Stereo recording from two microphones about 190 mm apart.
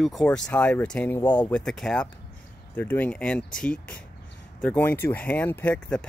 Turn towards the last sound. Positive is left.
turn(degrees=5)  # may be behind; listen again after turning